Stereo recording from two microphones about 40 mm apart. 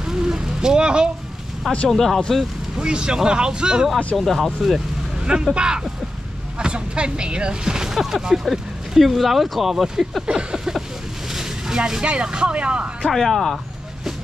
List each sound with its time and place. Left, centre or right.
0.0 s vehicle: centre
1.9 s speech: centre
2.8 s speech: right
4.2 s speech: centre
4.6 s speech: centre
5.2 s speech: right; by 10.2 s centre
10.2 s a sound: centre
11.3 s speech: centre
13.0 s speech: centre